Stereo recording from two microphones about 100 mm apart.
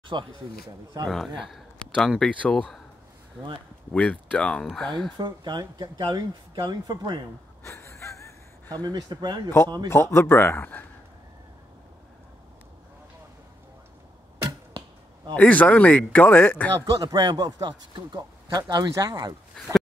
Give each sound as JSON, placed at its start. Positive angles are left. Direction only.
{"t": 0.1, "sound": "speech", "side_deg": -50}
{"t": 1.0, "sound": "a man's voice", "side_deg": 5}
{"t": 3.9, "sound": "speech", "side_deg": 15}
{"t": 5.1, "sound": "speech", "side_deg": -45}
{"t": 7.6, "sound": "gasp", "side_deg": 30}
{"t": 8.6, "sound": "speech", "side_deg": -40}
{"t": 9.8, "sound": "a man's voice", "side_deg": 25}
{"t": 15.3, "sound": "speech", "side_deg": 15}
{"t": 16.9, "sound": "speech", "side_deg": -45}
{"t": 19.6, "sound": "speech", "side_deg": 10}